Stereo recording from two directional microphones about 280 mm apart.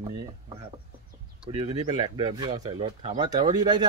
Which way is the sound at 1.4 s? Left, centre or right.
Centre.